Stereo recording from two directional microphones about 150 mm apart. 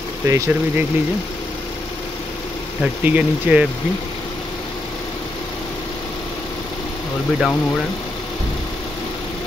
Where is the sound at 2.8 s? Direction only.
10° right (ahead or behind).